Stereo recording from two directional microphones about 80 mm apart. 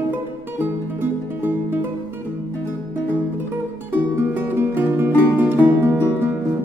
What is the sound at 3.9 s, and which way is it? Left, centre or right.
Music, right.